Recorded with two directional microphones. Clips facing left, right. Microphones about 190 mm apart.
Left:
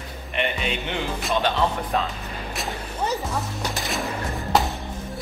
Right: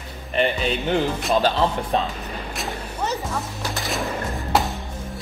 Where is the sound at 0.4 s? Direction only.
35° right (ahead or behind).